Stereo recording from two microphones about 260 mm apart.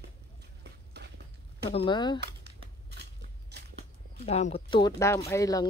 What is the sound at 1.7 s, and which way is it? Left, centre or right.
Speech, centre.